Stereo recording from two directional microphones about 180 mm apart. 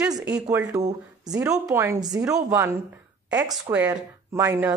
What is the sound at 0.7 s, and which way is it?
Speech, 35° right (ahead or behind).